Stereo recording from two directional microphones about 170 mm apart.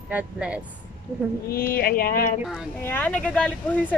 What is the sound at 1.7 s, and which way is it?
Speech, 60° left (ahead or behind).